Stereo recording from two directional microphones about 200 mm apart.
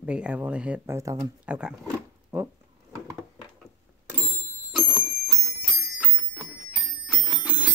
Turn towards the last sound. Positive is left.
turn(degrees=-5)  # may be behind; listen again after turning